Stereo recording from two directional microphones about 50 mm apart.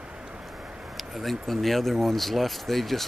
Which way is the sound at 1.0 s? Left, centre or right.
Centre.